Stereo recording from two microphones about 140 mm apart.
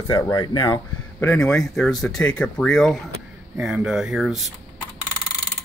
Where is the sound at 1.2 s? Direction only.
10° left (ahead or behind).